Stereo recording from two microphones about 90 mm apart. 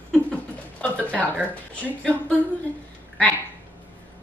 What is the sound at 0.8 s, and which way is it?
A woman's voice, 15° left (ahead or behind).